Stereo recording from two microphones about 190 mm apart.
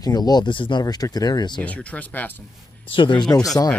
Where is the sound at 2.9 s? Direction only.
25° left (ahead or behind).